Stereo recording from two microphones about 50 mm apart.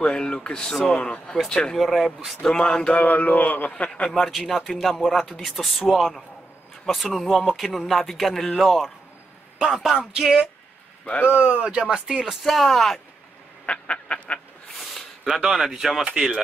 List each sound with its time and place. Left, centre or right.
0.0 s speech: left
1.8 s speech: centre
2.4 s speech: centre
2.9 s a man's voice: left
3.7 s speech: left
4.1 s speech: centre
9.6 s speech: centre
11.1 s a man's voice: left
11.3 s speech: right
11.7 s speech: centre
12.4 s speech: centre
13.7 s duck: left
14.7 s a sound: centre
15.2 s speech: centre